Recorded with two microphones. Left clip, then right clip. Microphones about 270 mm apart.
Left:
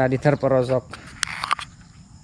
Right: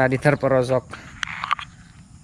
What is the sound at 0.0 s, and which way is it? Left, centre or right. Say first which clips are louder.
Speech: right 1 dB; centre.